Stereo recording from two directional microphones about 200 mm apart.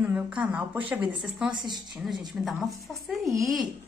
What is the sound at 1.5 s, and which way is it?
Speech, 20° right (ahead or behind).